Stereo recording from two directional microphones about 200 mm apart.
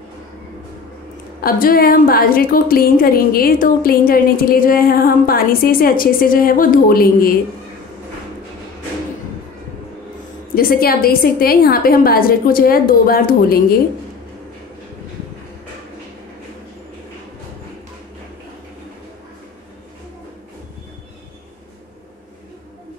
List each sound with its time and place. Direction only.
1.4 s a woman's voice: 45° left (ahead or behind)
10.5 s a woman's voice: 50° left (ahead or behind)